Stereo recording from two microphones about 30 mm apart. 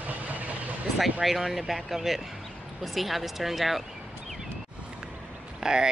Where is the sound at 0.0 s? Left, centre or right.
Right.